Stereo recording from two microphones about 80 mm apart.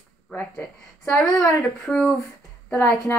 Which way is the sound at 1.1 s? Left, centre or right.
Centre.